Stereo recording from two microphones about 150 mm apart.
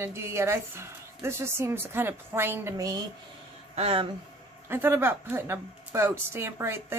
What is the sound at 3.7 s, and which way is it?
Speech, 40° right (ahead or behind).